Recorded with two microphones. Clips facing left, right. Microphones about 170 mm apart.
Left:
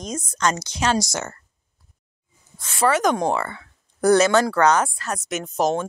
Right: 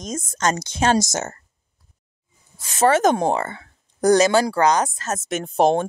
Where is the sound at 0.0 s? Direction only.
50° right (ahead or behind).